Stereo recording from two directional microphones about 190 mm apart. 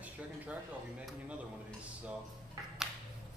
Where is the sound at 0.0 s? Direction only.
5° right (ahead or behind).